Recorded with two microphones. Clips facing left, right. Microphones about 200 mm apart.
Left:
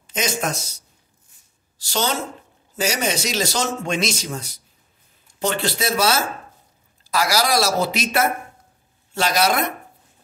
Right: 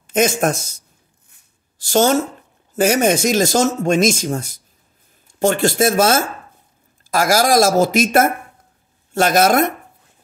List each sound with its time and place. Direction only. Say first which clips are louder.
0.0 s speech: right 8 dB; 50° right (ahead or behind)
1.3 s a sound: right 1 dB; 50° right (ahead or behind)
2.7 s speech: right 8 dB; 50° right (ahead or behind)